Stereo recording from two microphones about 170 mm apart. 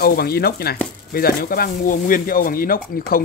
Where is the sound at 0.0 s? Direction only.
65° left (ahead or behind).